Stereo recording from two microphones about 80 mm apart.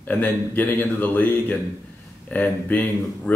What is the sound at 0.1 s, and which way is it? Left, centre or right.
Speech, left.